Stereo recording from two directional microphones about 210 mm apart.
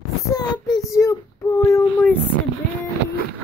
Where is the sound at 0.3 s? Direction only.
15° left (ahead or behind).